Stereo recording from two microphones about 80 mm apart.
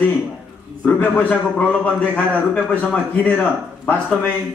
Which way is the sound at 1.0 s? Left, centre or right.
Centre.